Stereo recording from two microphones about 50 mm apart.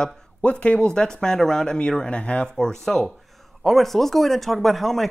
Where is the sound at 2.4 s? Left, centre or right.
Centre.